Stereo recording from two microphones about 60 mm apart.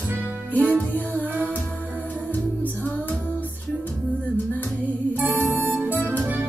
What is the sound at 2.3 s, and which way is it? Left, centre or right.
Music, left.